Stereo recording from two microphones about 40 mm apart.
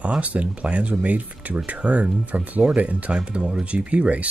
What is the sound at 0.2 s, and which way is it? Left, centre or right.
Speech, right.